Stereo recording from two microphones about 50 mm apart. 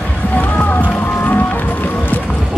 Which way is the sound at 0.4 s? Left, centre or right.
Left.